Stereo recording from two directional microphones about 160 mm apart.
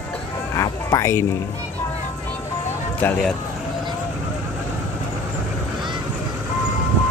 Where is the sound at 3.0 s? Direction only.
5° left (ahead or behind).